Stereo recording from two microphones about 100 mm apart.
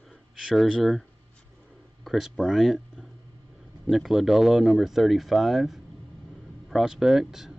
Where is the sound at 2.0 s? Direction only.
5° right (ahead or behind).